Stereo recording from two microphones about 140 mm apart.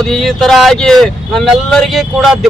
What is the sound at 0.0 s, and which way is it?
Speech, centre (ahead or behind).